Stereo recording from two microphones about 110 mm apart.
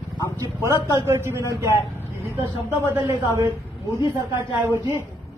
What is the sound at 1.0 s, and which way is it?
Speech, 25° right (ahead or behind).